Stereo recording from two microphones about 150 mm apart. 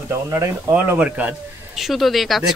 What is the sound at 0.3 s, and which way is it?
Speech, 20° right (ahead or behind).